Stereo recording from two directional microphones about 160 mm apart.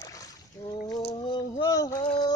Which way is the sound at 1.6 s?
20° left (ahead or behind).